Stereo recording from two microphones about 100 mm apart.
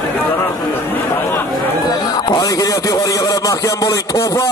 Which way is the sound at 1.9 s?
40° left (ahead or behind).